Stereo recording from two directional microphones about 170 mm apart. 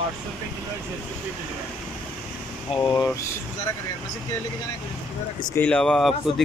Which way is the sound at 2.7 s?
20° left (ahead or behind).